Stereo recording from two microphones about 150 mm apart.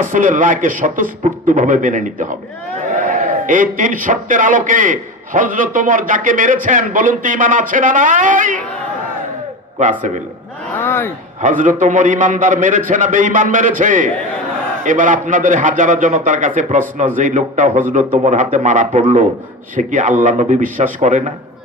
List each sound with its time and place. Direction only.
0.0 s a man's voice: 60° right (ahead or behind)
9.8 s a man's voice: 55° right (ahead or behind)
10.7 s speech: 10° left (ahead or behind)
11.4 s a man's voice: 60° right (ahead or behind)